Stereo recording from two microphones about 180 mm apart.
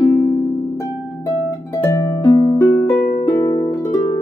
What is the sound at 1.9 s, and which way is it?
Harp, 20° left (ahead or behind).